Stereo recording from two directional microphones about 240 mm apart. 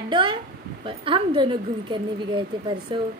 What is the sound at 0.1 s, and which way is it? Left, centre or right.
A woman's voice, right.